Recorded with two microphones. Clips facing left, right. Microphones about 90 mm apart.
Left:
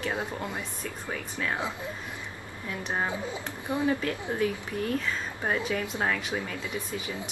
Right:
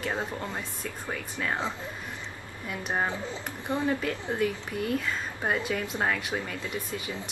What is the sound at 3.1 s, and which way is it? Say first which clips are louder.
Speech: left 1 dB; 15° left (ahead or behind).